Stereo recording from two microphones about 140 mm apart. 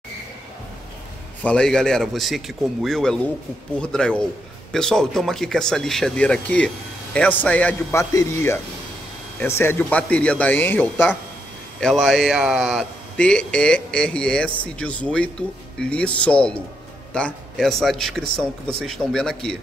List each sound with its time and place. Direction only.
1.4 s speech: 5° left (ahead or behind)
7.9 s a man's voice: 20° left (ahead or behind)
11.8 s speech: centre (ahead or behind)